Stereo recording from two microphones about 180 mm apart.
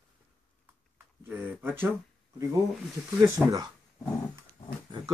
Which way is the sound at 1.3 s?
10° right (ahead or behind).